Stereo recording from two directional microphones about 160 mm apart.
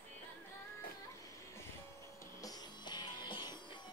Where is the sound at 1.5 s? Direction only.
15° left (ahead or behind).